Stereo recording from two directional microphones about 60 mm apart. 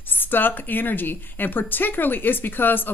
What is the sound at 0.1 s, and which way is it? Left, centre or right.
A woman's voice, left.